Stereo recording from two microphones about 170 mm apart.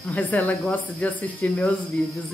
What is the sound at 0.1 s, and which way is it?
Speech, 10° left (ahead or behind).